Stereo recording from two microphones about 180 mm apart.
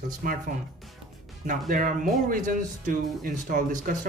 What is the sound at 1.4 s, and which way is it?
Speech, 45° right (ahead or behind).